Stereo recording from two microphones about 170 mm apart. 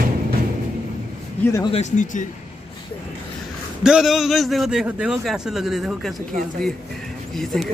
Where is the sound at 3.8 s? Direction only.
5° right (ahead or behind).